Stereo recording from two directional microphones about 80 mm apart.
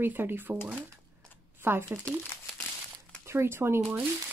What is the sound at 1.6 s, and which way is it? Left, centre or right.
Speech, right.